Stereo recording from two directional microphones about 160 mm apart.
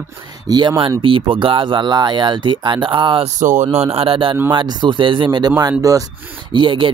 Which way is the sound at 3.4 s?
50° right (ahead or behind).